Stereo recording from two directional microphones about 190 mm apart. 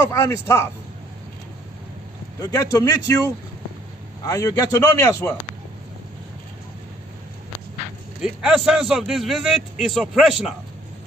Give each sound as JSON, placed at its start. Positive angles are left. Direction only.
{"t": 0.1, "sound": "a man's voice", "side_deg": 15}
{"t": 2.4, "sound": "a man's voice", "side_deg": 15}
{"t": 8.2, "sound": "a man's voice", "side_deg": 0}